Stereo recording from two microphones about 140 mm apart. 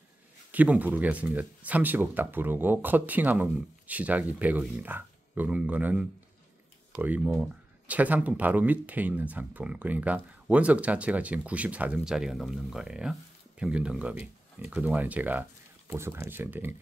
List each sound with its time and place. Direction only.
0.5 s speech: 10° right (ahead or behind)
7.2 s speech: 10° right (ahead or behind)